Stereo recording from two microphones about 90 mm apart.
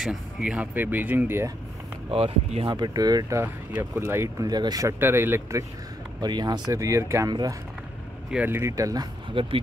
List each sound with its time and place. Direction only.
0.0 s speech: 5° right (ahead or behind)
0.7 s speech: 20° right (ahead or behind)
2.0 s speech: 90° right
2.7 s speech: 50° right (ahead or behind)
3.4 s speech: 25° right (ahead or behind)
4.4 s speech: 50° right (ahead or behind)
4.8 s speech: 25° right (ahead or behind)
6.2 s speech: 55° right (ahead or behind)
6.7 s speech: 35° right (ahead or behind)
7.2 s speech: 50° right (ahead or behind)
8.5 s speech: 25° right (ahead or behind)
8.7 s speech: 40° right (ahead or behind)
9.3 s speech: 75° right (ahead or behind)